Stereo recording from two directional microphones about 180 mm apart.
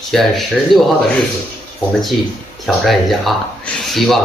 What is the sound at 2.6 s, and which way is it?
Speech, centre (ahead or behind).